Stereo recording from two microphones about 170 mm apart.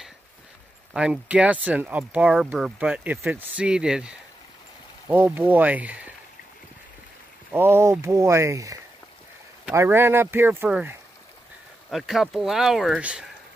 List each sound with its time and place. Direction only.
0.9 s speech: 5° right (ahead or behind)
7.5 s speech: 15° right (ahead or behind)
9.8 s speech: 15° right (ahead or behind)